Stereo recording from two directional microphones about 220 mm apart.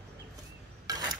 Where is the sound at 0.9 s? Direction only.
15° right (ahead or behind).